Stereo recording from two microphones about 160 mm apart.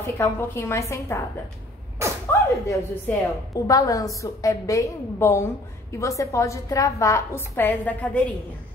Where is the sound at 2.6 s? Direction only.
20° left (ahead or behind).